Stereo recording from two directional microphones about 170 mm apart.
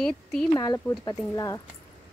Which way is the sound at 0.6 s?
25° left (ahead or behind).